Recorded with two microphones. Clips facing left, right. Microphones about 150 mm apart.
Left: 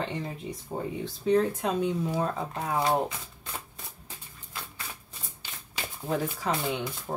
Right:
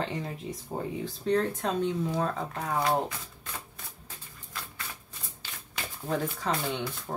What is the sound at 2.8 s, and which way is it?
Speech, 25° left (ahead or behind).